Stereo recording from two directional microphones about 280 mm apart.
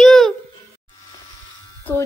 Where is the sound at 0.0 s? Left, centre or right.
Centre.